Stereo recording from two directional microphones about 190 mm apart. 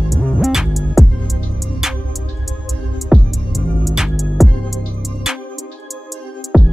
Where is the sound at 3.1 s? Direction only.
Centre (ahead or behind).